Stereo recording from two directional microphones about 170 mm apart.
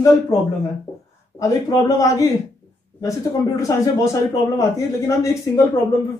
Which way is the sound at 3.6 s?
20° left (ahead or behind).